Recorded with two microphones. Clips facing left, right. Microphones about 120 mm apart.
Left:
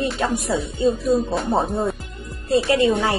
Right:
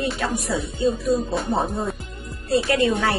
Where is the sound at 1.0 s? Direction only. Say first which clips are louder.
Left 2 dB; centre (ahead or behind).